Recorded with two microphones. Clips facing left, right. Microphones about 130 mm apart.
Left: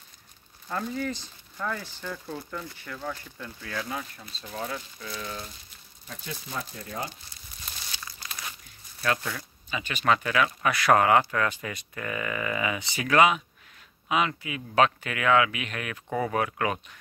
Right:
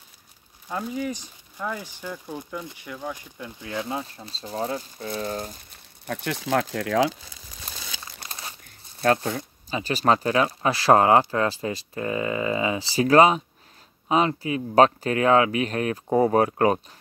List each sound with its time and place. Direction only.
0.7 s speech: 10° right (ahead or behind); by 5.6 s 40° right (ahead or behind)
6.0 s speech: 70° right (ahead or behind); by 7.1 s 90° right
8.2 s crumpling: 30° right (ahead or behind)
9.0 s speech: 35° right (ahead or behind)